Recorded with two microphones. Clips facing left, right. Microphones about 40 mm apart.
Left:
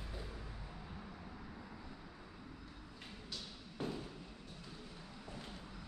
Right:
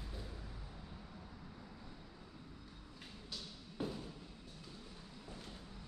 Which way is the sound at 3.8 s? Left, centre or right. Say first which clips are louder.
Even; centre.